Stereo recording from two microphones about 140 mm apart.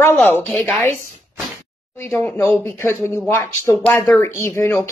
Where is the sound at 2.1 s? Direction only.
15° left (ahead or behind).